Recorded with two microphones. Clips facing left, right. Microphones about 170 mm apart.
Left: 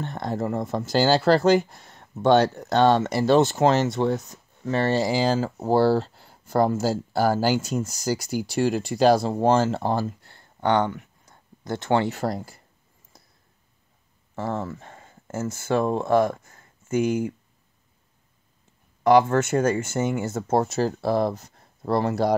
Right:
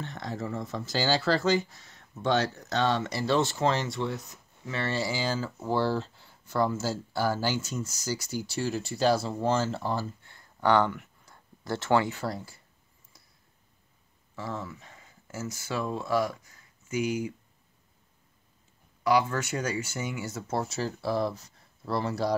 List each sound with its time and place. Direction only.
0.0 s speech: 55° left (ahead or behind)
3.8 s speech: 45° left (ahead or behind)
7.2 s speech: 55° left (ahead or behind)
9.2 s speech: 55° left (ahead or behind)
10.2 s a sound: 30° left (ahead or behind)
12.0 s speech: 45° left (ahead or behind)
14.3 s speech: 50° left (ahead or behind)
19.0 s speech: 50° left (ahead or behind)